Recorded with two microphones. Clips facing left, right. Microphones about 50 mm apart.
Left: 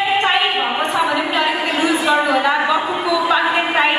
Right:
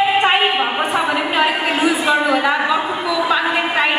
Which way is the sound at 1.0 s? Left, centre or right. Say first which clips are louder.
Right 1 dB; centre.